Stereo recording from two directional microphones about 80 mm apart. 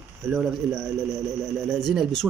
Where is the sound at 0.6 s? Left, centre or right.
Centre.